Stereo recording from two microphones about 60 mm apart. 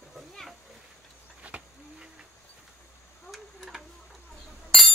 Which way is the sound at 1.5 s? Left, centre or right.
Right.